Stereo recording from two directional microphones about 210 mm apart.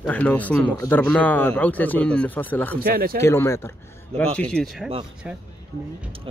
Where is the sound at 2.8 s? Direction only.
45° right (ahead or behind).